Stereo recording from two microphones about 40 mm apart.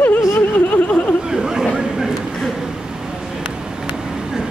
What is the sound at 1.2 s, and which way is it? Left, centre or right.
Chatter, centre.